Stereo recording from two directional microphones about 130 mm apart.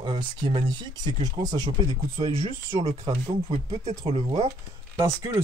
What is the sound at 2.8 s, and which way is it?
Speech, 50° right (ahead or behind).